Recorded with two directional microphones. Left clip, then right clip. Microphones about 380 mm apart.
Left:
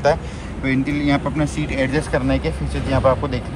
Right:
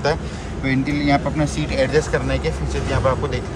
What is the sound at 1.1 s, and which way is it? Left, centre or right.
Speech, centre.